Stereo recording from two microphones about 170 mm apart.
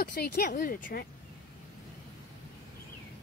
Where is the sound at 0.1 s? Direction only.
60° left (ahead or behind).